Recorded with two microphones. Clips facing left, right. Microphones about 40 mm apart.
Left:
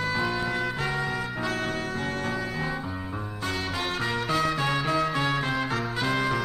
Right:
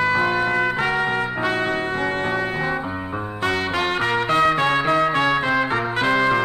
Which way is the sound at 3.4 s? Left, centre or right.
Right.